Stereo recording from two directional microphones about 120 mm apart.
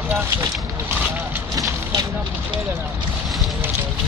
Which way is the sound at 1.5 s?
30° right (ahead or behind).